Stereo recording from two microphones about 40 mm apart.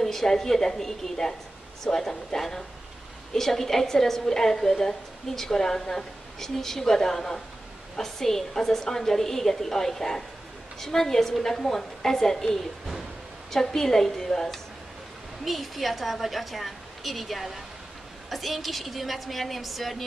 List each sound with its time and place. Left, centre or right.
0.0 s a woman's voice: centre
15.4 s a woman's voice: centre